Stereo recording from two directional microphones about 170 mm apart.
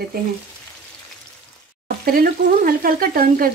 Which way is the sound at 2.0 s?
60° right (ahead or behind).